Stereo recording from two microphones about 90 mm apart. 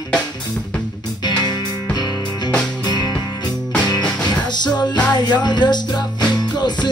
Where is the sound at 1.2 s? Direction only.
50° left (ahead or behind).